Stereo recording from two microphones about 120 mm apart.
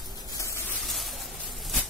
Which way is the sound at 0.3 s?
25° left (ahead or behind).